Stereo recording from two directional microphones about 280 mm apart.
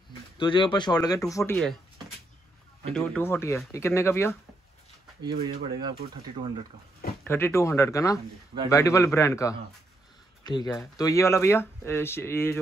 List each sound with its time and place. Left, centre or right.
0.4 s speech: centre
2.9 s speech: centre
5.2 s speech: centre
7.2 s speech: centre